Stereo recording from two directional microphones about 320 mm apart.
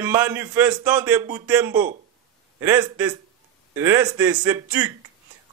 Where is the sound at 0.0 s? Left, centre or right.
Centre.